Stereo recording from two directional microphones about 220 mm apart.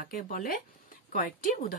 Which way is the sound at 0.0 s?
40° left (ahead or behind).